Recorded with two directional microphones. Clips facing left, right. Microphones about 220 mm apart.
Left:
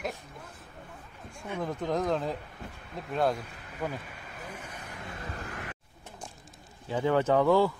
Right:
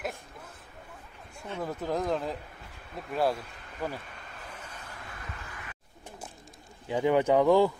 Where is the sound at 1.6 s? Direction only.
5° right (ahead or behind).